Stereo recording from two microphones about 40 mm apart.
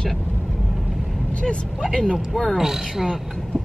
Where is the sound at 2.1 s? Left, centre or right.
Centre.